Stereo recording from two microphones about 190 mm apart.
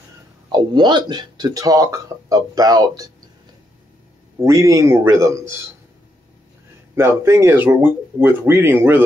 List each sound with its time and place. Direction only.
0.5 s speech: 25° right (ahead or behind)
4.4 s speech: 15° right (ahead or behind)
7.0 s speech: 15° right (ahead or behind)